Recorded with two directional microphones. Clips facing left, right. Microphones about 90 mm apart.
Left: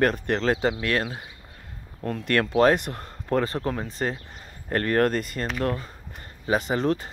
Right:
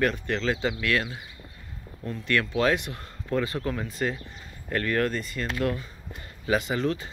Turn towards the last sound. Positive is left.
turn(degrees=40)  # may be behind; listen again after turning